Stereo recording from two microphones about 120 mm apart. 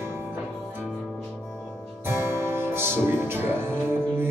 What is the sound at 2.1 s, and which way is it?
Music, 20° right (ahead or behind).